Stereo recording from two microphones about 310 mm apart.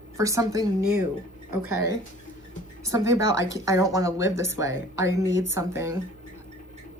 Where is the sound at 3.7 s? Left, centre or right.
Centre.